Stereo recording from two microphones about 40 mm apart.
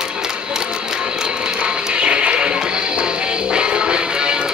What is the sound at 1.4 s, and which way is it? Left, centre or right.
Music, right.